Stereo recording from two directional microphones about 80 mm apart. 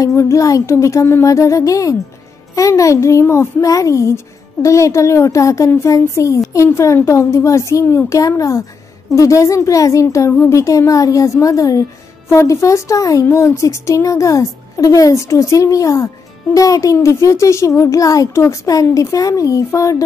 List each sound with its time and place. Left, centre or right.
0.0 s a child's voice: left